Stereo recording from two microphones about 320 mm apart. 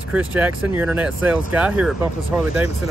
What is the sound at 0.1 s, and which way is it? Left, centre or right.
Speech, centre.